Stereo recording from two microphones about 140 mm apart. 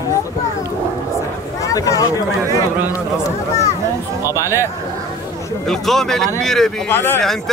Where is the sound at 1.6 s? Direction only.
25° left (ahead or behind).